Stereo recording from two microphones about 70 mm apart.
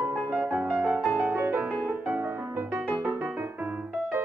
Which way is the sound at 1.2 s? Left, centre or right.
Right.